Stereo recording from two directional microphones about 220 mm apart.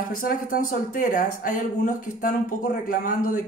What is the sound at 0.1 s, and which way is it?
Speech, 40° left (ahead or behind).